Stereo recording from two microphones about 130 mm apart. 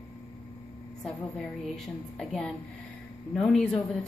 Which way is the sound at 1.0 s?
5° left (ahead or behind).